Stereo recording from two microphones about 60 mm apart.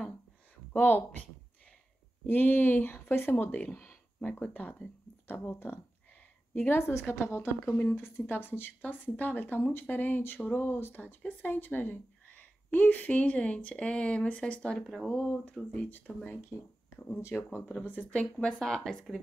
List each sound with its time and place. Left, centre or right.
0.7 s speech: left
2.2 s speech: left
4.2 s speech: left
5.4 s a woman's voice: left
6.8 s speech: left; by 14.8 s centre
14.8 s speech: centre
15.0 s speech: left
15.9 s speech: left
17.2 s speech: left
18.1 s speech: centre